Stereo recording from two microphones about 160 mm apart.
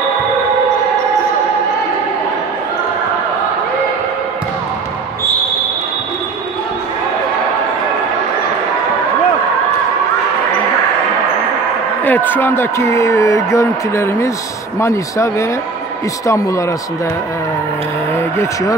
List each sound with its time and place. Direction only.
12.0 s a man's voice: 10° left (ahead or behind)
18.4 s a man's voice: 20° left (ahead or behind)